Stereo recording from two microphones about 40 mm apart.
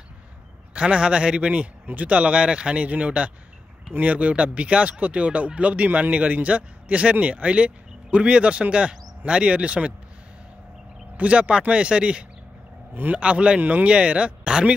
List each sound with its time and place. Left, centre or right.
0.7 s speech: right
1.9 s a man's voice: right
11.1 s a man's voice: right
12.9 s speech: right
13.2 s speech: right
13.6 s speech: right
13.8 s speech: right